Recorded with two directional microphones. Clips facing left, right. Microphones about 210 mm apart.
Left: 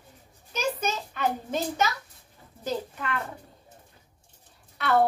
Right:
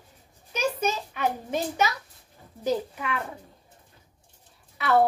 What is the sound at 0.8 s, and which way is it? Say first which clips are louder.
A woman's voice: right 2 dB; 10° right (ahead or behind).